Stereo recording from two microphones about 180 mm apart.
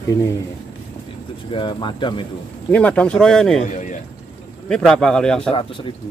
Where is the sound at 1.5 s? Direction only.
25° left (ahead or behind).